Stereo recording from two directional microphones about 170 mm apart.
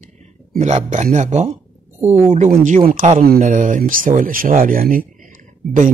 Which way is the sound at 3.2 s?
60° right (ahead or behind).